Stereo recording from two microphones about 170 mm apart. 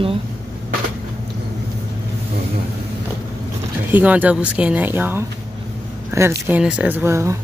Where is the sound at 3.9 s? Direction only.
10° right (ahead or behind).